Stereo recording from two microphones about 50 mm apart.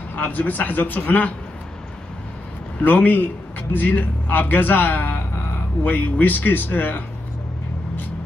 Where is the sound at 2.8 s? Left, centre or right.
Left.